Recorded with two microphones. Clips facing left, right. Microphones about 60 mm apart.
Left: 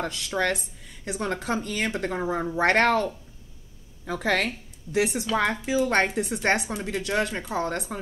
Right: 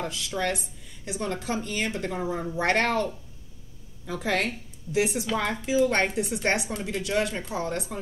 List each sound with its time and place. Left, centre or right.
0.0 s speech: left